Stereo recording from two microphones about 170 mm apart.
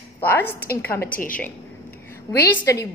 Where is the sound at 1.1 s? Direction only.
55° left (ahead or behind).